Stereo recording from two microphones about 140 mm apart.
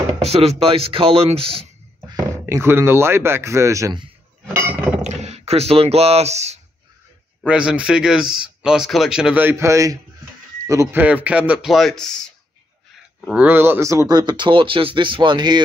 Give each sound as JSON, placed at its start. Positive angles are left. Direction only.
{"t": 0.2, "sound": "speech", "side_deg": -50}
{"t": 2.4, "sound": "speech", "side_deg": -15}
{"t": 4.6, "sound": "chink", "side_deg": -10}
{"t": 5.0, "sound": "speech", "side_deg": -55}
{"t": 7.4, "sound": "speech", "side_deg": -5}
{"t": 13.3, "sound": "speech", "side_deg": -10}